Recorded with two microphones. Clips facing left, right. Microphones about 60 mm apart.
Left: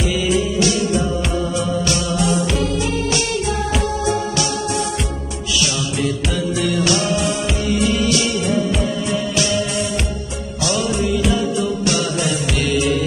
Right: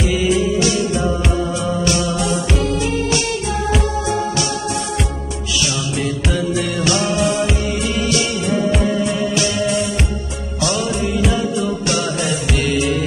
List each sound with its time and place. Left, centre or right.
6.3 s music: right
10.6 s music: right